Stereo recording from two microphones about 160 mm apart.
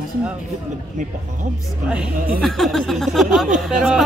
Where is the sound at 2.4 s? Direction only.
Centre (ahead or behind).